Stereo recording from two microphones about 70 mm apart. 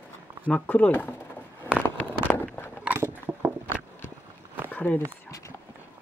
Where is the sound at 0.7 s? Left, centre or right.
Left.